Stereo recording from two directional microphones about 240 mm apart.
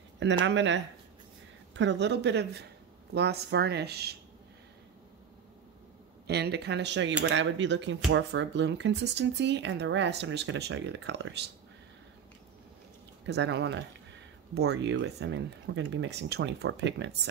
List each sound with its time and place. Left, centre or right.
0.2 s speech: right
6.2 s speech: right
13.3 s speech: right